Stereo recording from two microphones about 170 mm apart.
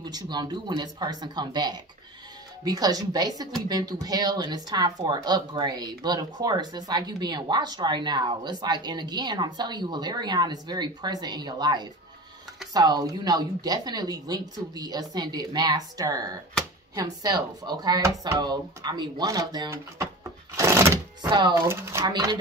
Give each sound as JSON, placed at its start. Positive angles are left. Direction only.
{"t": 0.0, "sound": "speech", "side_deg": -25}